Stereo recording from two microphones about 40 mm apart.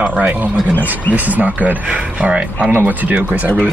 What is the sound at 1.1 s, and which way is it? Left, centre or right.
Speech, right.